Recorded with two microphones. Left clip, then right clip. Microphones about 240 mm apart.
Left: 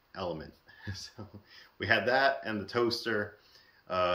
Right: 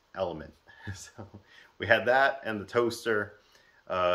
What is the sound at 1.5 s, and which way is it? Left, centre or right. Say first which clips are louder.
Speech: right 3 dB; centre.